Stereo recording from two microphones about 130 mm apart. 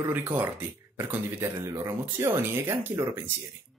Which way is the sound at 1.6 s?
20° right (ahead or behind).